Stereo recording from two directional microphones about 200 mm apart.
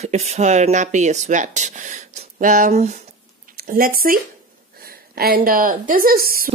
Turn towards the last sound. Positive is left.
turn(degrees=-45)  # may be behind; listen again after turning